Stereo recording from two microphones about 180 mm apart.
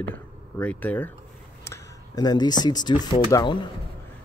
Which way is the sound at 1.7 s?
20° left (ahead or behind).